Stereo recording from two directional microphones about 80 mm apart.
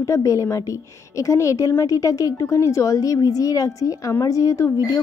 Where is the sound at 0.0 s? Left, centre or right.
Left.